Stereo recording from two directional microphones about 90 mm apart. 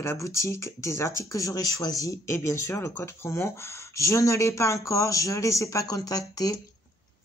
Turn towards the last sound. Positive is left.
turn(degrees=40)  # may be behind; listen again after turning